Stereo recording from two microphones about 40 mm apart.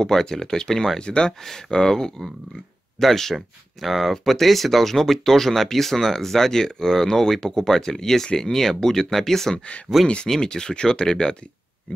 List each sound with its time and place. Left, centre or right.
0.0 s speech: centre